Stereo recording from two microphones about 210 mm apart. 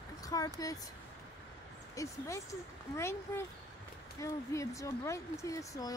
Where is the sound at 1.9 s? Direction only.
15° left (ahead or behind).